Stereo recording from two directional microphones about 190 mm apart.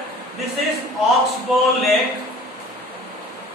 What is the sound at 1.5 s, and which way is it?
Speech, centre (ahead or behind).